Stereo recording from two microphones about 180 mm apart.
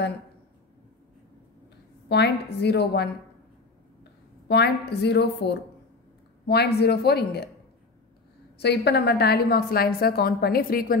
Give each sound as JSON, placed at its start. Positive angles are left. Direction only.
{"t": 2.0, "sound": "a woman's voice", "side_deg": 70}
{"t": 4.5, "sound": "a woman's voice", "side_deg": 70}
{"t": 8.5, "sound": "a woman's voice", "side_deg": 65}